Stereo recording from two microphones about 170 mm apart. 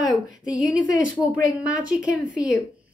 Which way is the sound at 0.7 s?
5° right (ahead or behind).